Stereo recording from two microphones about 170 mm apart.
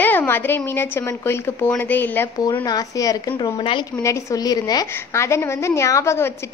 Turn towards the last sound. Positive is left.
turn(degrees=15)  # may be behind; listen again after turning